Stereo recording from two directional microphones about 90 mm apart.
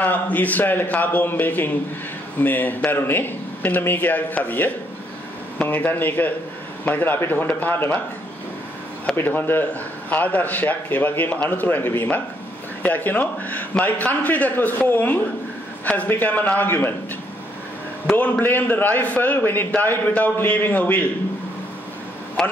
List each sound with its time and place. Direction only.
0.0 s a man's voice: 20° left (ahead or behind)
9.1 s a man's voice: 25° left (ahead or behind)
18.4 s a man's voice: 20° left (ahead or behind)
22.4 s a man's voice: 5° left (ahead or behind)